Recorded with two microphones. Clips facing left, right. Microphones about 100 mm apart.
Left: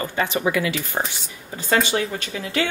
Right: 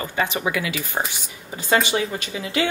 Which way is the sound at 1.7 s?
10° right (ahead or behind).